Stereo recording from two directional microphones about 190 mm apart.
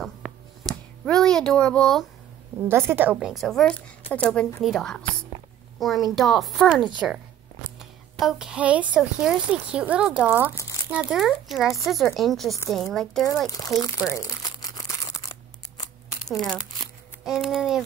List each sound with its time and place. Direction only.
0.2 s a sound: centre (ahead or behind)
1.0 s speech: 5° left (ahead or behind)
2.7 s a woman's voice: 10° right (ahead or behind)
13.5 s speech: 20° left (ahead or behind)
14.1 s crumpling: 20° left (ahead or behind)
16.3 s speech: centre (ahead or behind)